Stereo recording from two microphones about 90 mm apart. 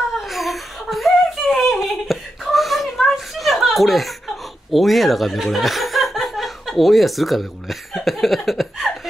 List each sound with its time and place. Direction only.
0.3 s laughter: centre (ahead or behind)
4.7 s speech: centre (ahead or behind)